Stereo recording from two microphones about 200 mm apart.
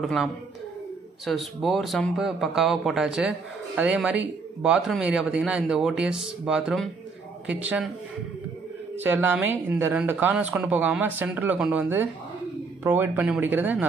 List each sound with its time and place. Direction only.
0.0 s speech: centre (ahead or behind)
9.0 s speech: 10° right (ahead or behind)